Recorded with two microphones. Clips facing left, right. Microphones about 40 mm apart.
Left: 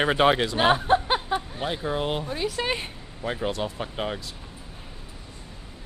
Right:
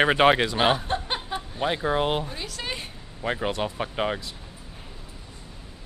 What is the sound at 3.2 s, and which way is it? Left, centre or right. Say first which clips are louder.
Speech: right 1 dB; centre.